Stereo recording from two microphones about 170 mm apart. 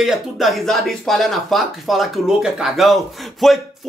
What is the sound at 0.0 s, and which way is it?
Speech, centre (ahead or behind).